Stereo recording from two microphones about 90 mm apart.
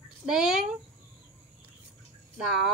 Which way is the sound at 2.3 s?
5° right (ahead or behind).